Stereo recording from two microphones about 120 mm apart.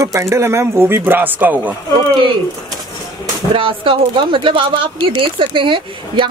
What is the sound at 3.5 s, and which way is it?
Speech, 45° right (ahead or behind).